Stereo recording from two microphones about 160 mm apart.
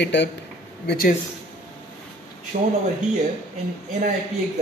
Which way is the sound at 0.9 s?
70° left (ahead or behind).